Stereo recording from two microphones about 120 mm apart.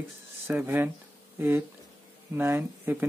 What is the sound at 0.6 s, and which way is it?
Speech, 15° right (ahead or behind).